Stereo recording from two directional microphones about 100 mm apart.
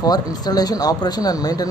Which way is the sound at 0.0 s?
40° left (ahead or behind).